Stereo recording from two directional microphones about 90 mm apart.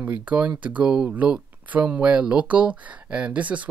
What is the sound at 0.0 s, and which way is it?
Speech, 15° right (ahead or behind).